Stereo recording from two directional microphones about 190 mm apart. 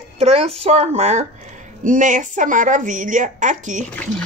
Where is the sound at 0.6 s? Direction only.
35° right (ahead or behind).